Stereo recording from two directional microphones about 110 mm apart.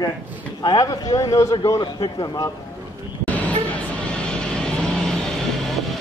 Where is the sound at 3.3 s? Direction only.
15° left (ahead or behind).